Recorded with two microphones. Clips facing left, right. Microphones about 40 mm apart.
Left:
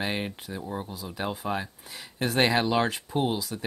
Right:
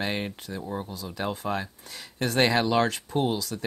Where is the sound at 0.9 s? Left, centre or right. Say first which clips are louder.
Right 1 dB; centre.